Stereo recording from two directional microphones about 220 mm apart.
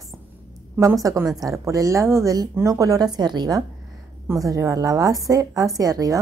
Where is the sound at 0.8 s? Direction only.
15° right (ahead or behind).